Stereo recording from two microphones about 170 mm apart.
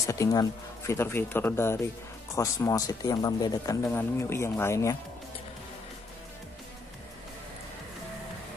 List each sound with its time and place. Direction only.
0.0 s speech: 20° left (ahead or behind)